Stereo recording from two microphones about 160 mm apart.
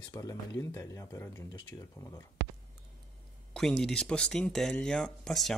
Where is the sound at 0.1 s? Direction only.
20° left (ahead or behind).